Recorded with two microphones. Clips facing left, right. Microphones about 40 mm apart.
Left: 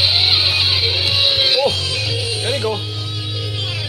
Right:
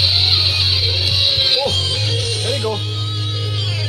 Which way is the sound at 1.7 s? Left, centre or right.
Left.